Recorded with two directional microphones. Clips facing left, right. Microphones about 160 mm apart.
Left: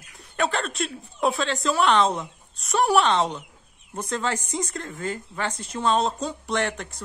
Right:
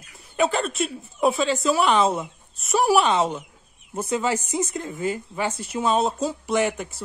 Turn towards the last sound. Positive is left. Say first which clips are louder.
# right 4 dB
turn(degrees=-5)  # may be behind; listen again after turning